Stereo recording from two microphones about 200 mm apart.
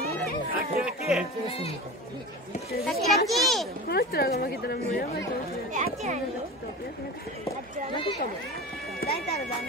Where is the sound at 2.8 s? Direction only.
Centre (ahead or behind).